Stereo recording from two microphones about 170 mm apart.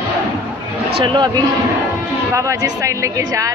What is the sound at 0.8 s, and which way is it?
Speech, 30° right (ahead or behind).